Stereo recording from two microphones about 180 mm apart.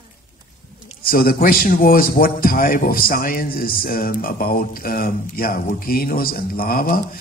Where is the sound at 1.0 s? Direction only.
55° left (ahead or behind).